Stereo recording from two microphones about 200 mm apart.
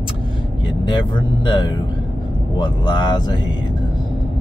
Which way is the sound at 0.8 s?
20° left (ahead or behind).